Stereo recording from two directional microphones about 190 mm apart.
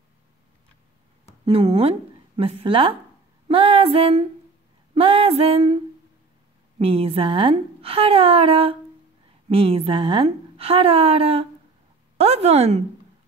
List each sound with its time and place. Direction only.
1.4 s speech: 30° right (ahead or behind)
3.4 s female singing: 30° right (ahead or behind)
4.9 s music: 30° right (ahead or behind)
6.8 s a woman's voice: 30° right (ahead or behind)